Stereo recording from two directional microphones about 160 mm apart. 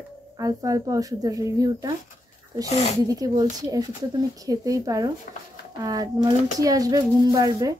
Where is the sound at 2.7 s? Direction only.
40° left (ahead or behind).